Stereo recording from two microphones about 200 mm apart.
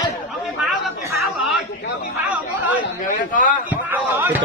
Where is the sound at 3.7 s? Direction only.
10° right (ahead or behind).